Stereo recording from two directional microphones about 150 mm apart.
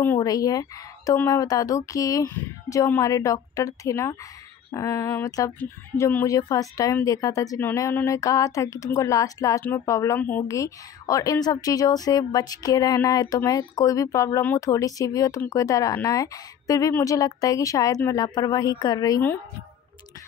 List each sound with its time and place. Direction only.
0.0 s speech: 15° left (ahead or behind)
0.3 s speech: 25° left (ahead or behind)